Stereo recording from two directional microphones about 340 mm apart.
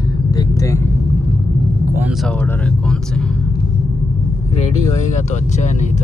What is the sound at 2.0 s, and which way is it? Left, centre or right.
Speech, centre.